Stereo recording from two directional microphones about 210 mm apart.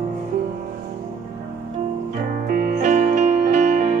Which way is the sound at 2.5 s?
45° right (ahead or behind).